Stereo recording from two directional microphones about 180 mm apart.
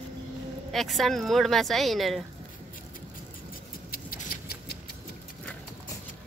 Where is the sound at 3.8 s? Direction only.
55° left (ahead or behind).